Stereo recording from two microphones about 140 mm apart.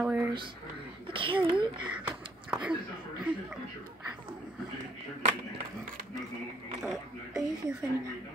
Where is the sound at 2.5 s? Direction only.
5° right (ahead or behind).